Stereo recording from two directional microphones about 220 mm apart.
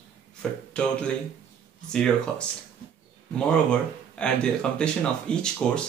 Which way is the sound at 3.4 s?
5° left (ahead or behind).